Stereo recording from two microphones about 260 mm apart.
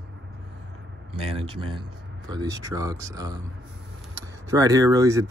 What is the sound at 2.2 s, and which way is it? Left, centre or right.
Speech, centre.